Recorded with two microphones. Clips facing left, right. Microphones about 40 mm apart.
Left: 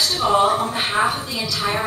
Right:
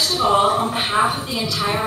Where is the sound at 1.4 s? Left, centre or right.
Right.